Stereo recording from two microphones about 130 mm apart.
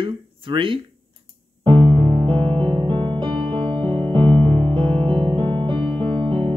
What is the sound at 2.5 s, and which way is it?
Music, 40° right (ahead or behind).